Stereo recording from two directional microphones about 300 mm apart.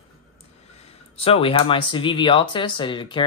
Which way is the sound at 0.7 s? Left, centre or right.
Centre.